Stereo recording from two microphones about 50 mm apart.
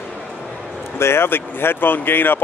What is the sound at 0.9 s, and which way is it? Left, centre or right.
Speech, left.